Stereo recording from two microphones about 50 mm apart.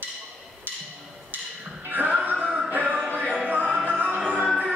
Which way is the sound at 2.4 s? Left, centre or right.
Centre.